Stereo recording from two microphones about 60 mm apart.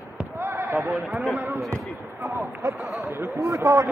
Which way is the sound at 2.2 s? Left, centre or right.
Right.